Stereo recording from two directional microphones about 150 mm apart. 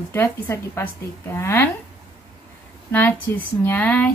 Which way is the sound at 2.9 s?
10° left (ahead or behind).